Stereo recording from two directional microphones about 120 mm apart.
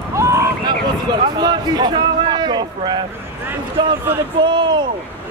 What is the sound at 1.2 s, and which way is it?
A man's voice, 35° right (ahead or behind).